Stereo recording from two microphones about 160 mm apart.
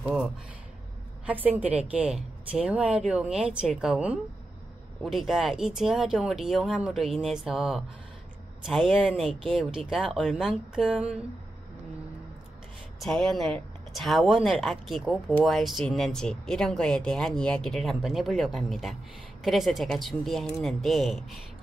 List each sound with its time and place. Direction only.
0.0 s a sound: 5° right (ahead or behind)
1.2 s a woman's voice: 10° right (ahead or behind)
9.3 s speech: 35° right (ahead or behind)
9.6 s speech: centre (ahead or behind)
13.0 s speech: centre (ahead or behind)